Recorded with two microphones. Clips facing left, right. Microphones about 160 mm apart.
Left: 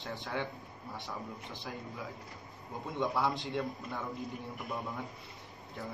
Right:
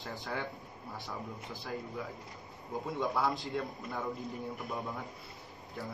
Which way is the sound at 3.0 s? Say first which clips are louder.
Left 1 dB; centre (ahead or behind).